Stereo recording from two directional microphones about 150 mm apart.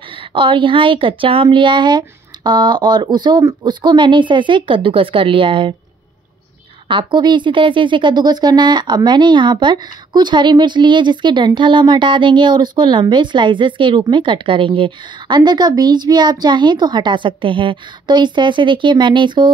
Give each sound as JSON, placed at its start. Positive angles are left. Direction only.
{"t": 0.3, "sound": "speech", "side_deg": -35}
{"t": 6.9, "sound": "speech", "side_deg": -30}